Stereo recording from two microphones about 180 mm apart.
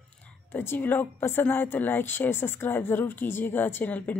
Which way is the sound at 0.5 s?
10° left (ahead or behind).